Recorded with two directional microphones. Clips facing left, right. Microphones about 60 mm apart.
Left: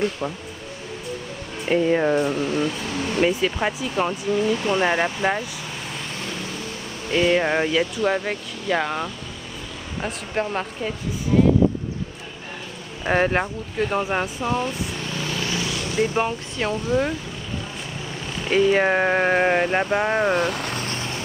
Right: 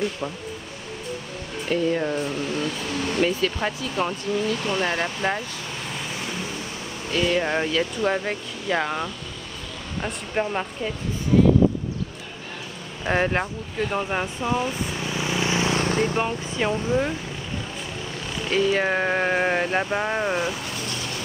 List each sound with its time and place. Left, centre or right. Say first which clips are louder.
1.7 s speech: left 4 dB; left; by 5.4 s centre
7.2 s speech: left 3 dB; left
8.0 s speech: left 1 dB; centre
13.0 s speech: left 2 dB; centre; by 16.0 s right
16.0 s speech: left 2 dB; centre
16.6 s speech: right 1 dB; centre
18.4 s speech: left 4 dB; centre
20.3 s vehicle: left 4 dB; left